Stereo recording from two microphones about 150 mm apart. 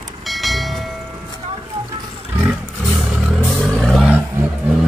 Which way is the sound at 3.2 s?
Centre (ahead or behind).